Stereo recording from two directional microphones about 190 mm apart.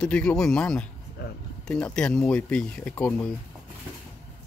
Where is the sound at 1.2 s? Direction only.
60° left (ahead or behind).